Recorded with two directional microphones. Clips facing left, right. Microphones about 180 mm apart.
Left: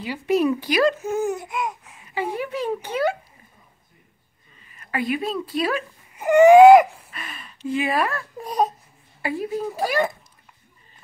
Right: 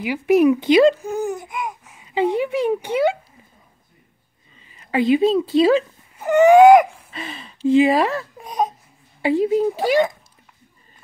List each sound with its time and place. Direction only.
0.0 s speech: 15° right (ahead or behind)
1.0 s a sound: centre (ahead or behind)
2.3 s speech: 20° right (ahead or behind)
4.7 s speech: 25° right (ahead or behind)
6.1 s baby cry: 10° left (ahead or behind)
7.1 s speech: 25° right (ahead or behind)
8.4 s speech: centre (ahead or behind)
9.2 s speech: 25° right (ahead or behind)